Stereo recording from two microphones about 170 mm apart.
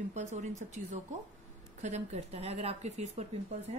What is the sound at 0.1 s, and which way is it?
Speech, 45° right (ahead or behind).